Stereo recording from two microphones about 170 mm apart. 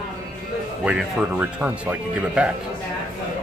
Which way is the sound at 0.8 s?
5° right (ahead or behind).